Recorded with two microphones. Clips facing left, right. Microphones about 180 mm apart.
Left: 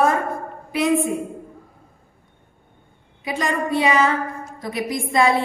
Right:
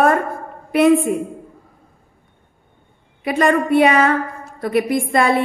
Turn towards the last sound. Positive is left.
turn(degrees=-60)  # may be behind; listen again after turning